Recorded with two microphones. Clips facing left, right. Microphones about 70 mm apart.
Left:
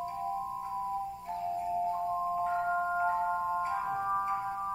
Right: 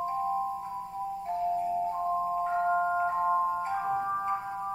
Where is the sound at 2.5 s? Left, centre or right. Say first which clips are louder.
Right 4 dB; centre.